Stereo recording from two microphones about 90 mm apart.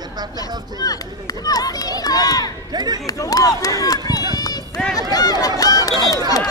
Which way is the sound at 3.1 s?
40° left (ahead or behind).